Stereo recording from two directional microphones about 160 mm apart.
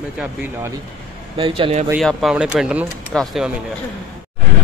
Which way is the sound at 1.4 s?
40° right (ahead or behind).